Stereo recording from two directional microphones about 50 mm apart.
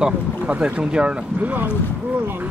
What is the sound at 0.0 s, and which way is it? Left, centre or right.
Speech, right.